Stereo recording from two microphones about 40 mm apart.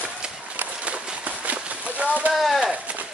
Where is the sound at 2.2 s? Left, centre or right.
Right.